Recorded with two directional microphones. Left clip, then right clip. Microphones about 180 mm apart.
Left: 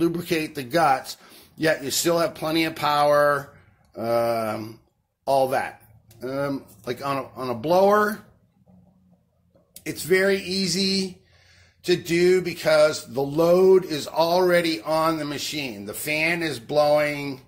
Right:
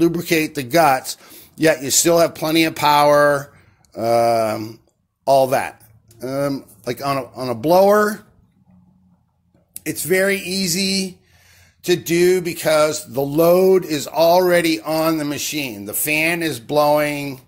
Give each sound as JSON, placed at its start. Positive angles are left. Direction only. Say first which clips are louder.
{"t": 0.0, "sound": "a man's voice", "louder": "right 7 dB", "side_deg": -45}
{"t": 9.8, "sound": "speech", "louder": "right 3 dB", "side_deg": -40}